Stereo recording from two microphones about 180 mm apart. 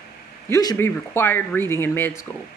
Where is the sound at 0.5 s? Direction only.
20° left (ahead or behind).